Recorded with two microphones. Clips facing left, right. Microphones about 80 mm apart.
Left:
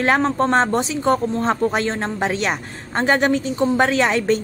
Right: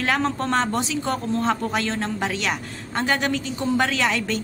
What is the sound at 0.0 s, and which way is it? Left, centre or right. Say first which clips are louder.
A woman's voice: left 5 dB; left.